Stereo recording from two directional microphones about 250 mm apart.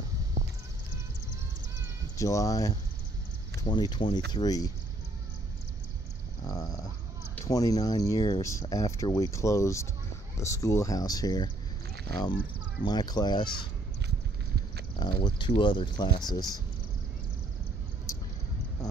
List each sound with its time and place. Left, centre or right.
2.1 s speech: centre
6.4 s a sound: centre
7.3 s speech: centre
15.0 s speech: centre